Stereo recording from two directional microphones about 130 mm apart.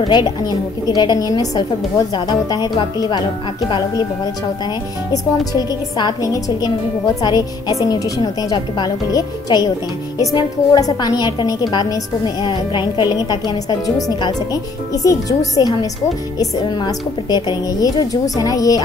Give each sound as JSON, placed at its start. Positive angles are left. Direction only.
{"t": 0.1, "sound": "a woman's voice", "side_deg": 30}
{"t": 5.1, "sound": "a woman's voice", "side_deg": 30}